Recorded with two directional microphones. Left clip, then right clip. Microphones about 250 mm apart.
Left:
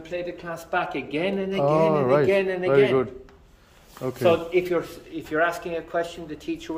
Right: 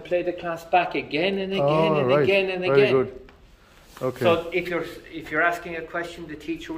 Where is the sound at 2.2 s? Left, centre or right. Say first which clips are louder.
Even; left.